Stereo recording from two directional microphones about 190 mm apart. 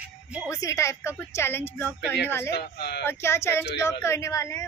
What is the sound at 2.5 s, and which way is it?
Speech, 60° left (ahead or behind).